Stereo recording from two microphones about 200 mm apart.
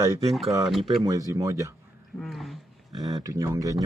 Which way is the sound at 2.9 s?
20° right (ahead or behind).